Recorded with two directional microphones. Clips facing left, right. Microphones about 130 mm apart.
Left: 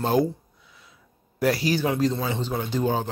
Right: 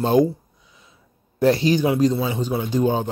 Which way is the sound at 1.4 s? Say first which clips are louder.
Right 5 dB; 25° right (ahead or behind).